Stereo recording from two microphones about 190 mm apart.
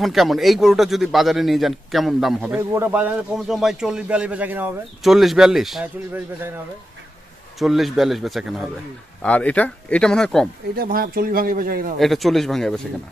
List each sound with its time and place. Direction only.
0.0 s a man's voice: centre (ahead or behind)
7.5 s a man's voice: centre (ahead or behind)
10.7 s a man's voice: 50° right (ahead or behind)
12.0 s a man's voice: centre (ahead or behind)